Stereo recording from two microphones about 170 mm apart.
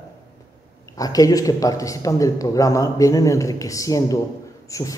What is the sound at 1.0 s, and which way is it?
Speech, 20° left (ahead or behind).